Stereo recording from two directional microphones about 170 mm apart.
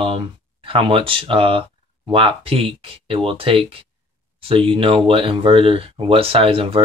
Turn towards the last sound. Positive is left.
turn(degrees=-35)  # may be behind; listen again after turning